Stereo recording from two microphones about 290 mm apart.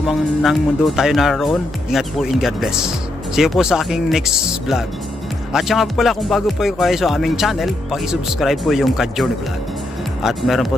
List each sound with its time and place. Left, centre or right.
0.0 s speech: centre